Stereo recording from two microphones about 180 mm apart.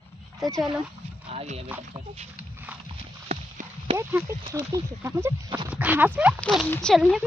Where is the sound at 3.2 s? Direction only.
40° right (ahead or behind).